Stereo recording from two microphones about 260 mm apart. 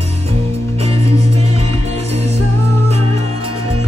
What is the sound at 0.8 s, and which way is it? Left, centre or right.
Music, right.